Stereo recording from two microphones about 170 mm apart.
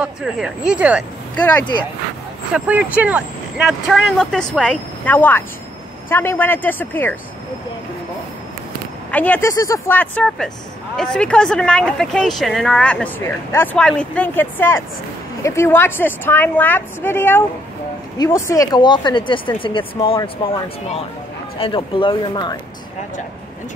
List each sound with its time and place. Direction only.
0.0 s speech: 5° right (ahead or behind)
1.3 s speech: 10° left (ahead or behind)
2.5 s a woman's voice: 10° right (ahead or behind); by 7.2 s 10° left (ahead or behind)
9.1 s a woman's voice: 10° left (ahead or behind); by 22.6 s 25° left (ahead or behind)